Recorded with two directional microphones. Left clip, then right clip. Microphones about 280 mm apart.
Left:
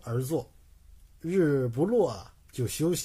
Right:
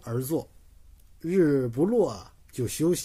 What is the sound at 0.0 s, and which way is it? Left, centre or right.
Speech, centre.